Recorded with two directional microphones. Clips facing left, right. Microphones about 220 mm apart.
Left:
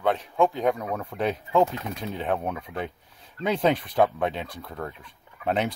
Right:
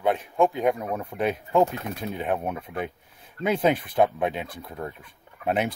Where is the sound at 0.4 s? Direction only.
15° right (ahead or behind).